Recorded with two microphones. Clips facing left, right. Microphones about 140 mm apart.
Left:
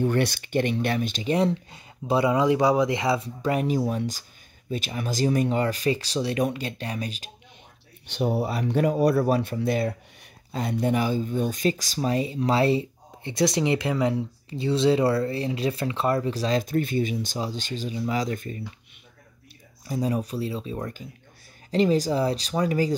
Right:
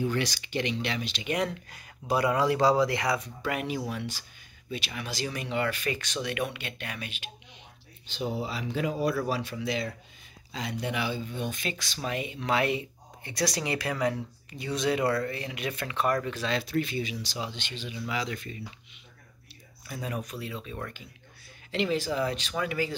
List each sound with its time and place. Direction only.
0.0 s speech: 55° left (ahead or behind)
1.2 s speech: 30° left (ahead or behind)
8.1 s speech: 65° left (ahead or behind); by 18.6 s 45° left (ahead or behind)
19.9 s speech: 35° left (ahead or behind)